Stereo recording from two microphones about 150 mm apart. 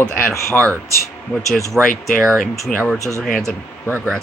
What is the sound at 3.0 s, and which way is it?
Speech, 20° right (ahead or behind).